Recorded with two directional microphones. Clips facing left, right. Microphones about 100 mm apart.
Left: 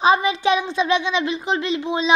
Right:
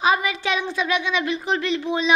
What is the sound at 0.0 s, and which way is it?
A child's voice, 25° left (ahead or behind).